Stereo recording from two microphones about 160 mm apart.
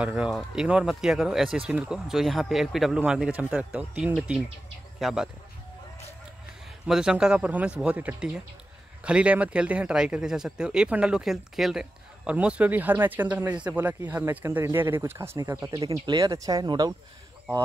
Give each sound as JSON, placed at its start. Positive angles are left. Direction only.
{"t": 0.0, "sound": "speech", "side_deg": -5}
{"t": 6.9, "sound": "speech", "side_deg": -5}